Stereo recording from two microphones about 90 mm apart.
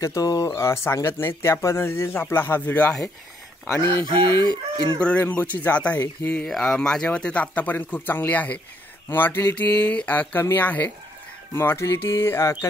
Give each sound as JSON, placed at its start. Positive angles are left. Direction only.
{"t": 0.0, "sound": "speech", "side_deg": 35}
{"t": 3.8, "sound": "speech", "side_deg": -60}
{"t": 5.0, "sound": "speech", "side_deg": 15}
{"t": 6.4, "sound": "speech", "side_deg": 5}